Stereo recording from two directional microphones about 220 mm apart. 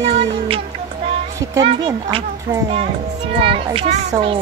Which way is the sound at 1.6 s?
25° right (ahead or behind).